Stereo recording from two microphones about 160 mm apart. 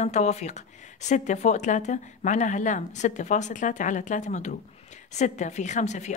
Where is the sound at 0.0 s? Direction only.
45° left (ahead or behind).